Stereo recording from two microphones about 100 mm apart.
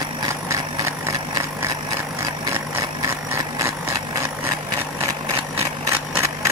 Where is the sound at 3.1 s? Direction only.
30° right (ahead or behind).